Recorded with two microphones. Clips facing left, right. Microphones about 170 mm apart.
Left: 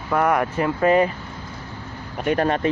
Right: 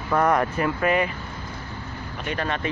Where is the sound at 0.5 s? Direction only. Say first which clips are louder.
Left 4 dB; 20° left (ahead or behind).